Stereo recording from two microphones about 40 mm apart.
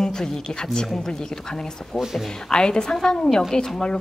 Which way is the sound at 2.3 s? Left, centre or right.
Centre.